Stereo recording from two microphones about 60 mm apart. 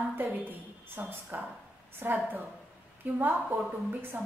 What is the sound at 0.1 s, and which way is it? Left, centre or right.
A woman's voice, right.